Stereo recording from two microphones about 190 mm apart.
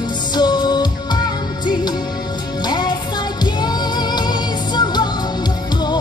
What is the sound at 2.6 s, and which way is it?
Music, 20° left (ahead or behind).